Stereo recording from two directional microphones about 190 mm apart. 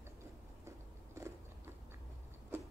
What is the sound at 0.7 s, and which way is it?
Biting, 15° right (ahead or behind).